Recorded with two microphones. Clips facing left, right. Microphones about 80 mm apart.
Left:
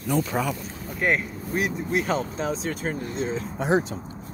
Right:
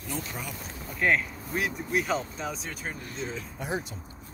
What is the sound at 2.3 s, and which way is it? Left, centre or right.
Speech, left.